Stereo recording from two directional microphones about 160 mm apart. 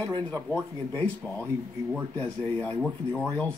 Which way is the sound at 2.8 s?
5° left (ahead or behind).